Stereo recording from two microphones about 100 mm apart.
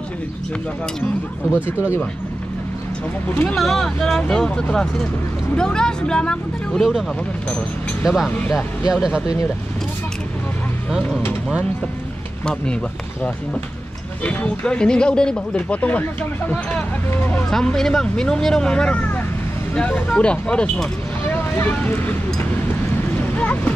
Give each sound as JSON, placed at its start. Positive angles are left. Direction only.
{"t": 3.4, "sound": "speech", "side_deg": 0}
{"t": 14.2, "sound": "speech", "side_deg": 15}
{"t": 17.5, "sound": "speech", "side_deg": 5}
{"t": 23.3, "sound": "boat", "side_deg": 15}